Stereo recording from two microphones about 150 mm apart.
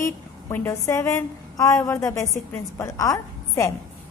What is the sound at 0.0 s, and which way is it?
A woman's voice, 20° left (ahead or behind).